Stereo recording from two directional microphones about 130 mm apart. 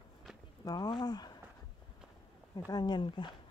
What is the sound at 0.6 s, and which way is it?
Speech, 30° left (ahead or behind).